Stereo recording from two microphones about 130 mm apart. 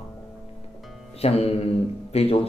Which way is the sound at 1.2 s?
50° left (ahead or behind).